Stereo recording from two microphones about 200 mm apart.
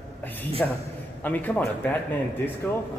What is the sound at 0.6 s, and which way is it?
Speech, 5° left (ahead or behind).